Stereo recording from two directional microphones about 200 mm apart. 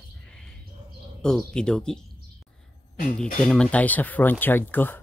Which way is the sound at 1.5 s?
5° left (ahead or behind).